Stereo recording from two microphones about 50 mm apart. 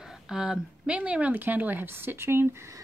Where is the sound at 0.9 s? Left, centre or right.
Right.